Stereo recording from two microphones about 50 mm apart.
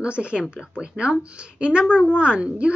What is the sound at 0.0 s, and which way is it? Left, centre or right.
A woman's voice, right.